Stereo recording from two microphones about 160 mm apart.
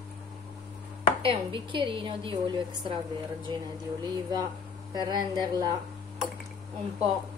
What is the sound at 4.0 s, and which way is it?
A woman's voice, 25° right (ahead or behind).